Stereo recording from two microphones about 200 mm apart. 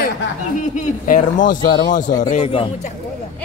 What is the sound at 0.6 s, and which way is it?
A man's voice, 40° left (ahead or behind).